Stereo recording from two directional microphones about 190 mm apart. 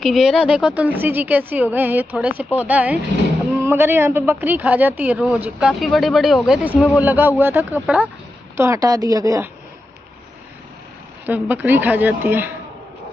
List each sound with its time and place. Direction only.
0.0 s a man's voice: centre (ahead or behind); by 9.5 s 15° right (ahead or behind)
11.2 s a man's voice: 10° right (ahead or behind)